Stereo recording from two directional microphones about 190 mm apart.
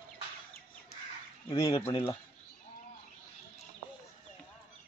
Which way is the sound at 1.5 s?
20° left (ahead or behind).